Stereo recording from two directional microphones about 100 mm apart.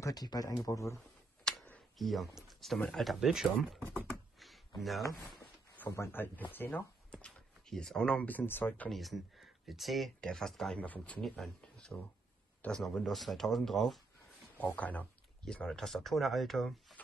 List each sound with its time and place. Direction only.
0.0 s speech: 40° left (ahead or behind)
1.5 s a sound: 10° left (ahead or behind)
2.0 s speech: centre (ahead or behind)
4.1 s a sound: centre (ahead or behind)
5.8 s speech: 25° left (ahead or behind)
8.9 s speech: centre (ahead or behind)
11.2 s speech: centre (ahead or behind)
11.9 s speech: 15° left (ahead or behind)
14.6 s speech: 15° left (ahead or behind)